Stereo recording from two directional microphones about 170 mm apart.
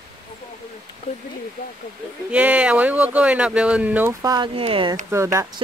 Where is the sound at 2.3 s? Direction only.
10° right (ahead or behind).